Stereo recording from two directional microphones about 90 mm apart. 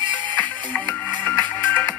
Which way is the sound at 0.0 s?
60° right (ahead or behind).